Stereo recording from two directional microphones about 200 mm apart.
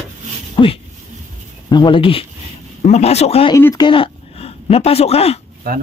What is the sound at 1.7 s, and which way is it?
A man's voice, 25° left (ahead or behind).